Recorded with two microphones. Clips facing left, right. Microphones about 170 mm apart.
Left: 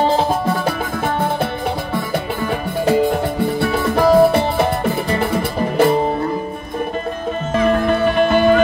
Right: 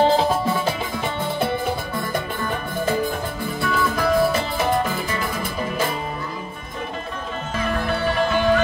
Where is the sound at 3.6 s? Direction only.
65° left (ahead or behind).